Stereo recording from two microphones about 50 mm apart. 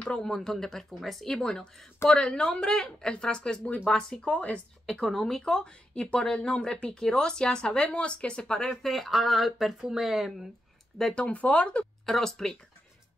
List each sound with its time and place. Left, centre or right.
0.2 s speech: centre
4.3 s speech: left
5.0 s speech: centre
5.4 s speech: left; by 10.5 s centre
11.1 s speech: left
12.1 s speech: centre